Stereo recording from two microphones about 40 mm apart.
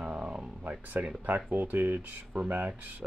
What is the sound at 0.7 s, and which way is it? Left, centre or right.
Speech, right.